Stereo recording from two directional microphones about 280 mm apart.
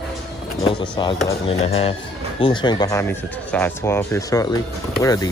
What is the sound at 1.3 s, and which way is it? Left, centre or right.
Speech, left.